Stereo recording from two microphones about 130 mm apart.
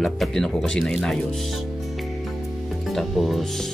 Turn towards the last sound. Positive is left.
turn(degrees=0)  # may be behind; listen again after turning